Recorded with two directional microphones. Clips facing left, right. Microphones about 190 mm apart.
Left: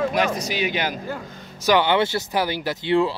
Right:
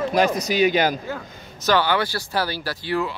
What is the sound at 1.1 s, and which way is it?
Speech, 15° left (ahead or behind).